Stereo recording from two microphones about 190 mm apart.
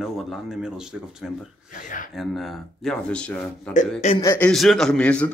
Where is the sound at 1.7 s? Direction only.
45° left (ahead or behind).